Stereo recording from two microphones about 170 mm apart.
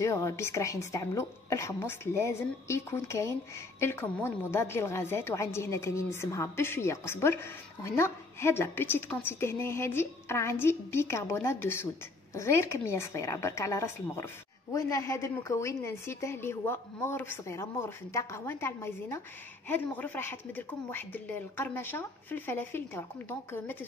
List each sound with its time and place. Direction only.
0.0 s a woman's voice: 20° left (ahead or behind)